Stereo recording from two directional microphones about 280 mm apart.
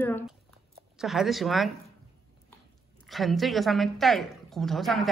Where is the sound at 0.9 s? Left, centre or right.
Centre.